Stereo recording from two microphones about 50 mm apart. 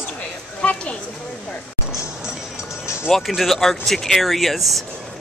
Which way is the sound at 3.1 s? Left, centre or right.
Centre.